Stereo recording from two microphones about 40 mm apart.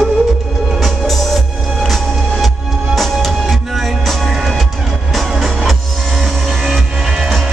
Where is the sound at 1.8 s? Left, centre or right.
Centre.